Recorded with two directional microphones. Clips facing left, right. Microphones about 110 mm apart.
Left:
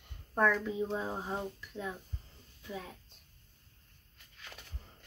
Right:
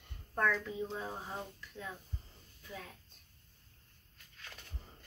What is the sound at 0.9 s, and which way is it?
A woman's voice, 25° left (ahead or behind).